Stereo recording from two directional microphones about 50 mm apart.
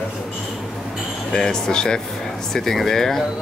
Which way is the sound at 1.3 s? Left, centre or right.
Centre.